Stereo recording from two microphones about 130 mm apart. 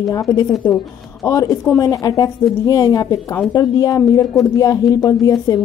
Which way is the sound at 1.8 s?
30° left (ahead or behind).